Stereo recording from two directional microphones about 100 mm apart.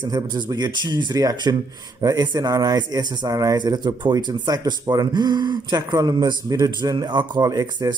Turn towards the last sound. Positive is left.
turn(degrees=-40)  # may be behind; listen again after turning